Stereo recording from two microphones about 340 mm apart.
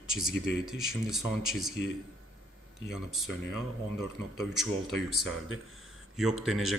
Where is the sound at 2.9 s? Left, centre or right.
Centre.